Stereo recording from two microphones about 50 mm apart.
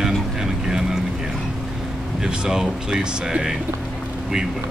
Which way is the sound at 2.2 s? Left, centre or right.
Centre.